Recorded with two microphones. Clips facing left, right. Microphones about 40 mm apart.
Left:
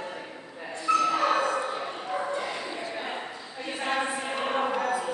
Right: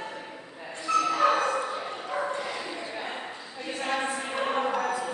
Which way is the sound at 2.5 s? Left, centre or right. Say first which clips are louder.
Left 1 dB; centre.